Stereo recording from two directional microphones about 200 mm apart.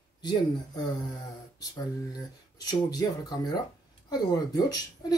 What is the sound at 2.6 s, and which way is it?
Speech, 20° left (ahead or behind).